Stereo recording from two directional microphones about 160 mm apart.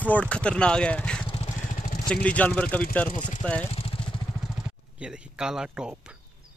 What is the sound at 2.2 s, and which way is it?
Speech, 10° left (ahead or behind).